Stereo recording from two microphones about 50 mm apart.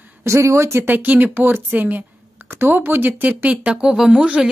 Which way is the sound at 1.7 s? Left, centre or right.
Right.